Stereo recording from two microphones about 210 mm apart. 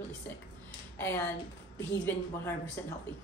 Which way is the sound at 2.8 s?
10° left (ahead or behind).